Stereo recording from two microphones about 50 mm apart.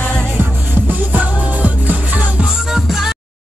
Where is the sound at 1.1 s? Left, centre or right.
Right.